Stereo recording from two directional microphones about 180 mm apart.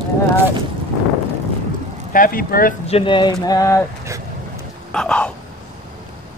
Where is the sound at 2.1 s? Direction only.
50° left (ahead or behind).